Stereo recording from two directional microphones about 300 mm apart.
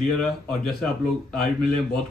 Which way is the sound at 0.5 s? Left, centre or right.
Centre.